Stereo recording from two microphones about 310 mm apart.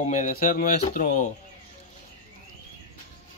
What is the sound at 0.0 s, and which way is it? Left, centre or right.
Speech, left.